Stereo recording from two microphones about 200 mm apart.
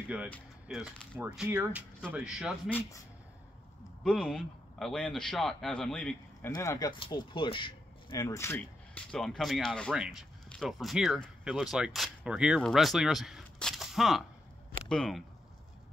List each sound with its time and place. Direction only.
0.3 s speech: centre (ahead or behind)
4.0 s speech: 5° left (ahead or behind)
6.5 s speech: 15° left (ahead or behind)